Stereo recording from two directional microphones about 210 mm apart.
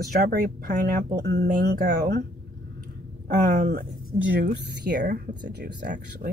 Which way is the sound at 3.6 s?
45° right (ahead or behind).